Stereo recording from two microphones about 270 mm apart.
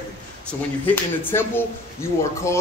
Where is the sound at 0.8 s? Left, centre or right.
Centre.